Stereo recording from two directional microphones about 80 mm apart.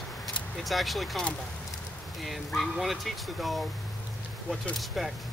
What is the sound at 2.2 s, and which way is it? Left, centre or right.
Speech, centre.